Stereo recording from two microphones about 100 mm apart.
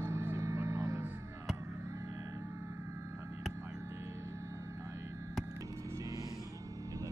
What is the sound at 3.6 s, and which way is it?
Vehicle, 30° right (ahead or behind).